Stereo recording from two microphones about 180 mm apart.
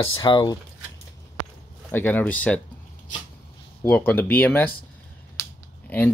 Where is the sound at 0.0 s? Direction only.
20° left (ahead or behind).